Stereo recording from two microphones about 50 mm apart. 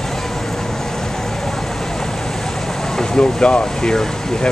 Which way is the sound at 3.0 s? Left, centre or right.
Centre.